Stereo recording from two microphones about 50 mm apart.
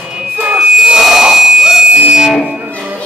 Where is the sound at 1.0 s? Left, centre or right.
Centre.